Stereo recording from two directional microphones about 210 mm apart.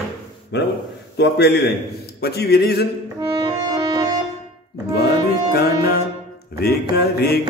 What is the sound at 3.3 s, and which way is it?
Music, 20° right (ahead or behind).